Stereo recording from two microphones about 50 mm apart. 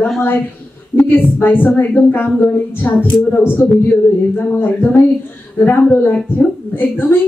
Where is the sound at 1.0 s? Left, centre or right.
Left.